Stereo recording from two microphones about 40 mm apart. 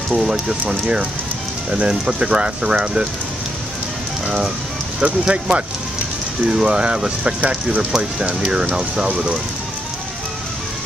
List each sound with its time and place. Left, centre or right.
0.1 s speech: centre
5.0 s speech: right